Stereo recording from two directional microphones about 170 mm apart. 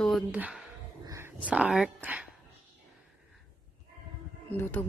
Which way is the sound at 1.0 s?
15° right (ahead or behind).